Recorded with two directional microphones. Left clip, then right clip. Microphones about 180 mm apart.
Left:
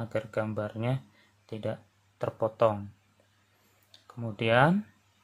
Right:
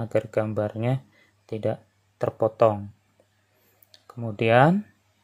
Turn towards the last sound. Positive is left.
turn(degrees=-25)  # may be behind; listen again after turning